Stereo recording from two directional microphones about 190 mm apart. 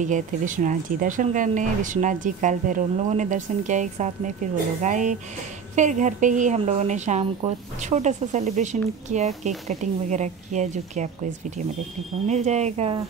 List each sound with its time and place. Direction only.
0.0 s speech: 40° right (ahead or behind)
12.3 s speech: 35° right (ahead or behind)